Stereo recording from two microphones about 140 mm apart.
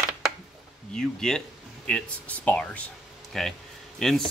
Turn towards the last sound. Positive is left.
turn(degrees=5)  # may be behind; listen again after turning